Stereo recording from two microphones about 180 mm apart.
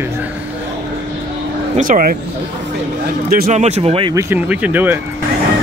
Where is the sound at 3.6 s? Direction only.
35° right (ahead or behind).